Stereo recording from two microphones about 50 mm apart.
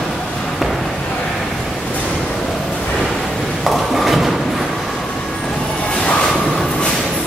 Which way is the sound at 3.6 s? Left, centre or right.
Centre.